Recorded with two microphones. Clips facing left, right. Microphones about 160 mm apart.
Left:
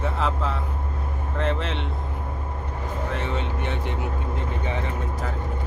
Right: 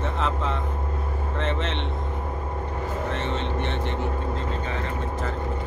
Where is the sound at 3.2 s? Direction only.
5° left (ahead or behind).